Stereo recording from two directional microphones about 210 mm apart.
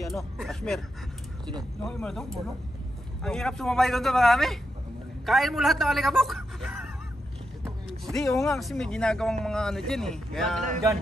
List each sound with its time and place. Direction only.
0.0 s speech: centre (ahead or behind)
1.9 s speech: 5° left (ahead or behind)
8.0 s speech: centre (ahead or behind)